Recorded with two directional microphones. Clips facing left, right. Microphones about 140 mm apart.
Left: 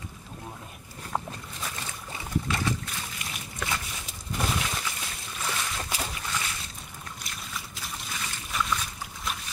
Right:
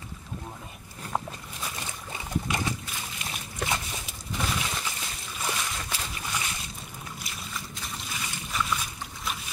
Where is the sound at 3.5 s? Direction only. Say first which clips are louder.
Right 2 dB; 25° right (ahead or behind).